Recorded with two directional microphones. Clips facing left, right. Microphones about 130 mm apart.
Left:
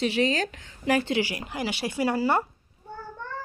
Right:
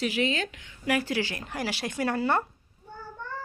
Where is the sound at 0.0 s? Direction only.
35° left (ahead or behind).